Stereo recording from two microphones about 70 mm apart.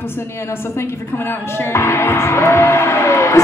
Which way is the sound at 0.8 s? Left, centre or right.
Left.